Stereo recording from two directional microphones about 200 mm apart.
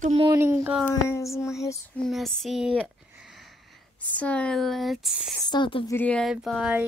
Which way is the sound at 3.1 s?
Centre (ahead or behind).